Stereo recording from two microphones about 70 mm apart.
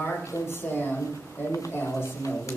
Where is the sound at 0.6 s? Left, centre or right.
Left.